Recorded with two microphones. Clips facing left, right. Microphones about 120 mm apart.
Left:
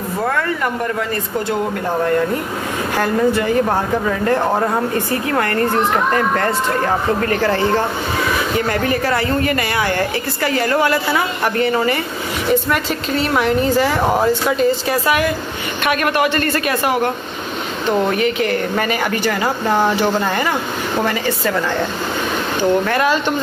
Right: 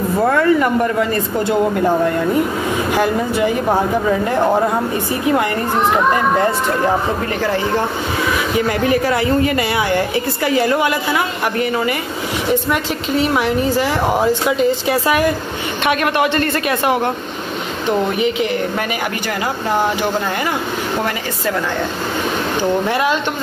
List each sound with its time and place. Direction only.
0.3 s a woman's voice: 15° right (ahead or behind)
3.0 s a woman's voice: 10° right (ahead or behind)
5.2 s a woman's voice: 15° right (ahead or behind)
15.8 s a man's voice: 25° right (ahead or behind)
22.6 s a woman's voice: 15° right (ahead or behind)